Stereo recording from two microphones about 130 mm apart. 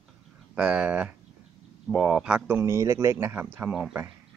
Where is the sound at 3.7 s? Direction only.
5° right (ahead or behind).